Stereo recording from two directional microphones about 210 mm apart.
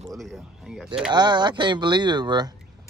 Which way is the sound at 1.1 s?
20° right (ahead or behind).